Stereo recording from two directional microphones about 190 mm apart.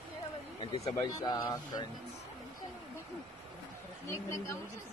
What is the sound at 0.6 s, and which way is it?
Speech, 25° left (ahead or behind).